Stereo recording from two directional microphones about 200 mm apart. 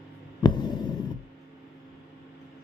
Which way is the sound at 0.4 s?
20° left (ahead or behind).